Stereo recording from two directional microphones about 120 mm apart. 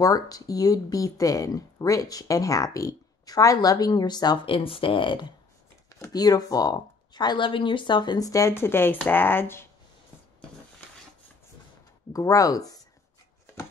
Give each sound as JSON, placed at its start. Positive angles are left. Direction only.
{"t": 0.0, "sound": "speech", "side_deg": 30}
{"t": 4.6, "sound": "speech", "side_deg": 50}
{"t": 5.9, "sound": "speech", "side_deg": 30}
{"t": 12.1, "sound": "speech", "side_deg": 30}